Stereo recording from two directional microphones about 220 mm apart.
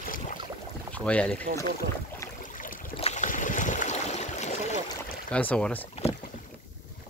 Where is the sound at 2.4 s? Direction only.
35° left (ahead or behind).